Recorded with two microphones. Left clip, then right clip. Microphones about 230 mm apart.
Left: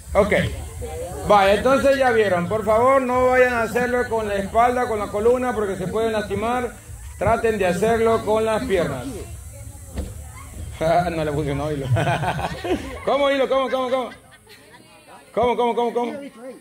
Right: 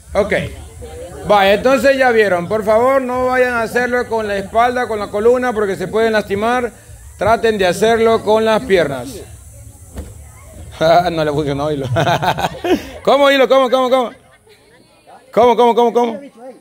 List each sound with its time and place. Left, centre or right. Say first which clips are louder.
0.1 s a man's voice: right 2 dB; right
10.7 s a man's voice: right 8 dB; right
15.3 s a man's voice: right 9 dB; right